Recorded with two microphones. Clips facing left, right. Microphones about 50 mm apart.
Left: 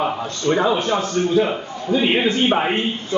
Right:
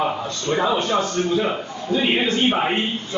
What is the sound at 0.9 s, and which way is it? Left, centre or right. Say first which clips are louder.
A man's voice: left 2 dB; centre.